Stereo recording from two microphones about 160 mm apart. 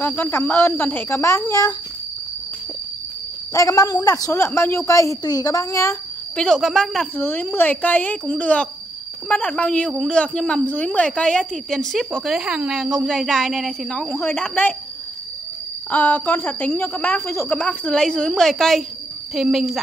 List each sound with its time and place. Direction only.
0.0 s a woman's voice: 15° left (ahead or behind)
3.5 s a woman's voice: 20° left (ahead or behind)
6.3 s a woman's voice: 5° left (ahead or behind)
15.9 s a woman's voice: 10° left (ahead or behind)